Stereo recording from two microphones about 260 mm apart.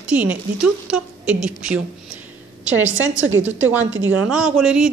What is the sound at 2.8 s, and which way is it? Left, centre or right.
Speech, right.